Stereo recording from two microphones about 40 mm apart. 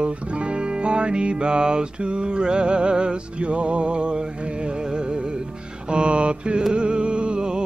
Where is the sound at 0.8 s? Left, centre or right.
Right.